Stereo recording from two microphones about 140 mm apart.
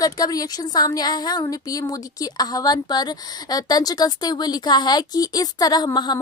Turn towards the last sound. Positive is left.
turn(degrees=30)  # may be behind; listen again after turning